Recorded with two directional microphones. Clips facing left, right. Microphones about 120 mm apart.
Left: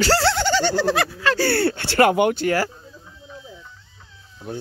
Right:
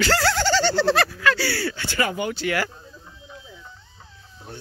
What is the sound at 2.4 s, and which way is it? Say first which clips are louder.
Speech: left 4 dB; 35° left (ahead or behind).